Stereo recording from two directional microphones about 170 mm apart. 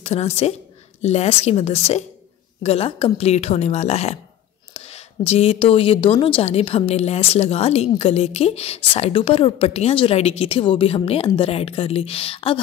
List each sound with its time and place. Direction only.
0.0 s a woman's voice: 40° left (ahead or behind)